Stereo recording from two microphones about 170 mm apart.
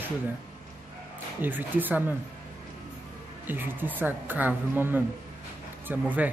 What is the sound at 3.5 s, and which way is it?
Speech, 10° right (ahead or behind).